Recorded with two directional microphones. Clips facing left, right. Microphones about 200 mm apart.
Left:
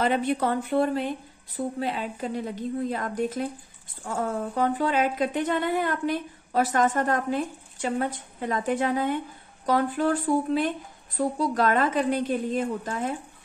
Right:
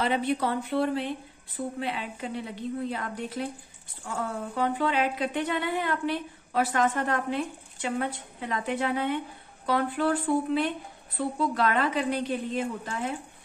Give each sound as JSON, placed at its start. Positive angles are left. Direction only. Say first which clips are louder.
{"t": 0.0, "sound": "a woman's voice", "louder": "left 2 dB", "side_deg": 50}